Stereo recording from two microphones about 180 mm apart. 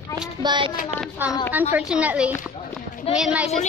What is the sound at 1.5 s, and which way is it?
A woman's voice, 10° right (ahead or behind).